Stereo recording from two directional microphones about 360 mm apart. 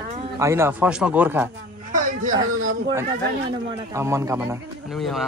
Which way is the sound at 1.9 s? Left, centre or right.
Right.